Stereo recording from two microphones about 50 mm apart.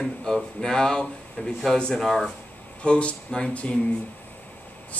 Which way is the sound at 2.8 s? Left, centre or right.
Left.